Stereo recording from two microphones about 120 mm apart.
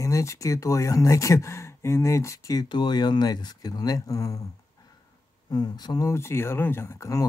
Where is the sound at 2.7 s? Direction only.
40° left (ahead or behind).